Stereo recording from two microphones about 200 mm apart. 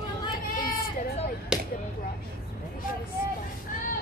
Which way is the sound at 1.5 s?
5° right (ahead or behind).